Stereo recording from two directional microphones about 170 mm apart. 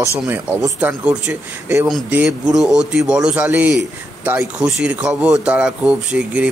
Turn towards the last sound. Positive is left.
turn(degrees=-5)  # may be behind; listen again after turning